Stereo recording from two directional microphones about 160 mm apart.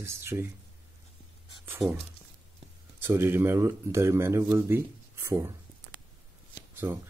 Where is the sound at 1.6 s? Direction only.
10° right (ahead or behind).